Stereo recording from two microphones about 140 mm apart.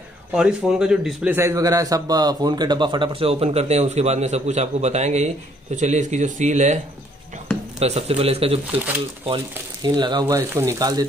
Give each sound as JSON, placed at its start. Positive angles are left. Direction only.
{"t": 0.3, "sound": "a man's voice", "side_deg": -5}
{"t": 7.8, "sound": "speech", "side_deg": -45}
{"t": 9.8, "sound": "speech", "side_deg": -30}